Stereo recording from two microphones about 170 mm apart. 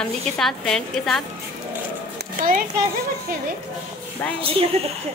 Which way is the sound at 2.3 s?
55° right (ahead or behind).